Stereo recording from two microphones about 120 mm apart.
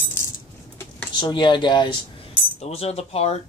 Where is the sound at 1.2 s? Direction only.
40° left (ahead or behind).